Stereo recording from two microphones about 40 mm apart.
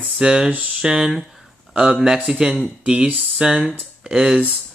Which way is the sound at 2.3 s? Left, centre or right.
Centre.